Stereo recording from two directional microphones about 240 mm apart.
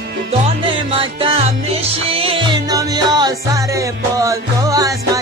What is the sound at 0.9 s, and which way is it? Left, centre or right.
Music, right.